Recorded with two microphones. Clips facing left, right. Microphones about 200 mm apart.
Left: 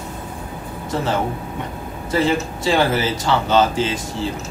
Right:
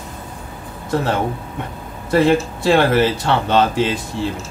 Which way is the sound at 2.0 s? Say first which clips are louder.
Right 4 dB; 60° right (ahead or behind).